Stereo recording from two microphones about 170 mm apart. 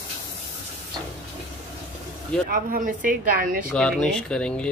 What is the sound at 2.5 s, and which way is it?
A woman's voice, 55° right (ahead or behind).